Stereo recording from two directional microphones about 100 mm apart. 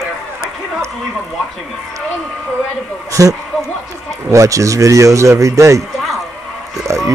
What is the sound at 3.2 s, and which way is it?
Speech, 30° right (ahead or behind).